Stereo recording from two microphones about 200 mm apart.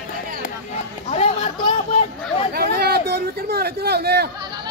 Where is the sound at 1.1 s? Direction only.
30° left (ahead or behind).